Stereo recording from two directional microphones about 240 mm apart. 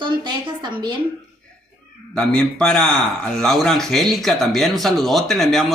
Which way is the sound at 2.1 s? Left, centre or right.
Centre.